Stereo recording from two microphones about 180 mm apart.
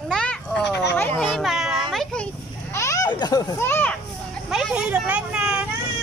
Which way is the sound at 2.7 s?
15° left (ahead or behind).